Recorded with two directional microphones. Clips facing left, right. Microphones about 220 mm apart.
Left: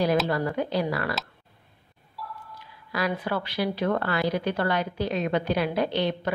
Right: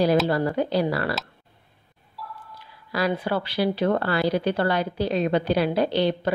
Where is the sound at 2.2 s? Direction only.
Centre (ahead or behind).